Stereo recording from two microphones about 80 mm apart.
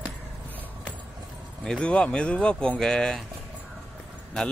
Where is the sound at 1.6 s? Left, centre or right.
Centre.